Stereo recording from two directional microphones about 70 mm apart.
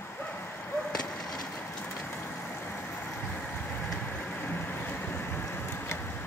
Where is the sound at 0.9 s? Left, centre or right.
Centre.